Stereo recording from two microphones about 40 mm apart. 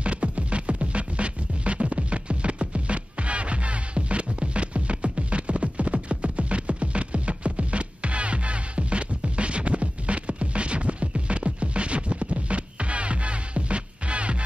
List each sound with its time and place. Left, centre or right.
0.0 s music: right